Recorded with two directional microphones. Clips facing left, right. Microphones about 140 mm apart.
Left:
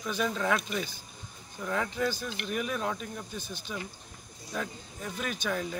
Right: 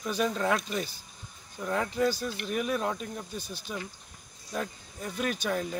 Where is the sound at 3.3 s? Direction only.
40° right (ahead or behind).